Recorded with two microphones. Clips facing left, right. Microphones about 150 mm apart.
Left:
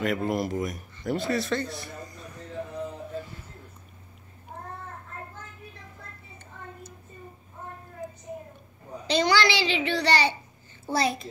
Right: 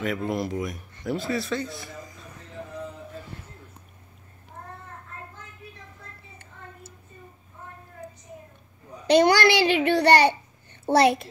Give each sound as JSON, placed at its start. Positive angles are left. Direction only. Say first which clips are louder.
{"t": 0.0, "sound": "speech", "louder": "left 1 dB", "side_deg": 0}
{"t": 9.0, "sound": "a child's voice", "louder": "right 5 dB", "side_deg": -60}
{"t": 10.9, "sound": "a child's voice", "louder": "right 7 dB", "side_deg": -70}